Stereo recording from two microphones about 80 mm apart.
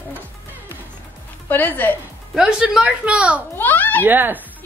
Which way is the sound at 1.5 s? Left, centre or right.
Left.